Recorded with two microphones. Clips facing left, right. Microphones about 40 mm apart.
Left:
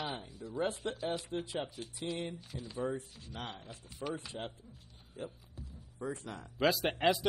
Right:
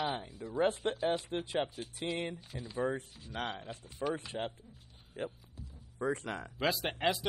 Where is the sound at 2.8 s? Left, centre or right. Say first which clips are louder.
Right 3 dB; right.